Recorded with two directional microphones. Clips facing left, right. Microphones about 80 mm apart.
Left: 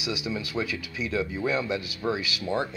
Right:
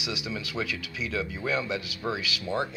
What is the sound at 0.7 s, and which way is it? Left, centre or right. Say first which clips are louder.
Speech: left 2 dB; left.